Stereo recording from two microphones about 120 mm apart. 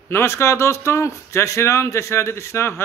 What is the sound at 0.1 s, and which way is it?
Speech, 20° left (ahead or behind).